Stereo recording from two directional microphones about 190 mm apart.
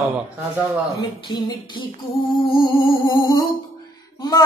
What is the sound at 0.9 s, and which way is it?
Music, 25° left (ahead or behind).